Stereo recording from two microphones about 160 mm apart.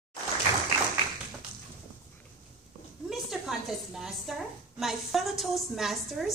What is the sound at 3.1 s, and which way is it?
A woman's voice, centre (ahead or behind).